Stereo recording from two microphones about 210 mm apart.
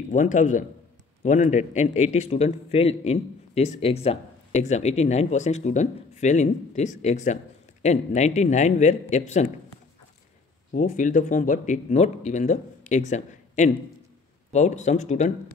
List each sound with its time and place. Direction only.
0.1 s a man's voice: 35° left (ahead or behind)
10.7 s a man's voice: 40° left (ahead or behind)